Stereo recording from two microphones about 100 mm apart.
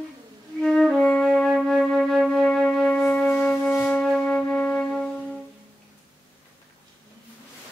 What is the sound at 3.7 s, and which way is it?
Wind instrument, 15° left (ahead or behind).